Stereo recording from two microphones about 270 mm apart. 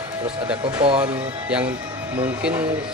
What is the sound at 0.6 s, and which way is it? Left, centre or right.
Speech, centre.